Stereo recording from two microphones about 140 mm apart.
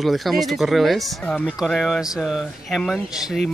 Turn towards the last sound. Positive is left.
turn(degrees=-5)  # may be behind; listen again after turning